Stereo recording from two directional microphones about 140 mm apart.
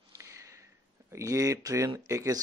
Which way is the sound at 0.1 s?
20° right (ahead or behind).